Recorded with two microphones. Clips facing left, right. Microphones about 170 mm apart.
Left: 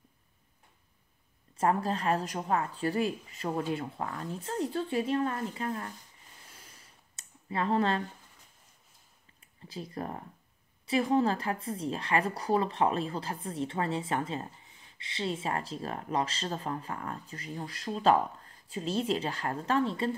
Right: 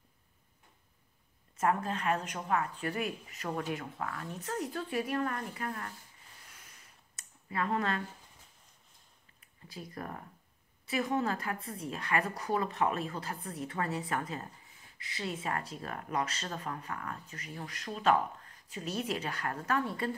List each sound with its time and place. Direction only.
1.6 s speech: 35° left (ahead or behind)
7.2 s a sound: 25° left (ahead or behind)
9.4 s speech: 25° left (ahead or behind)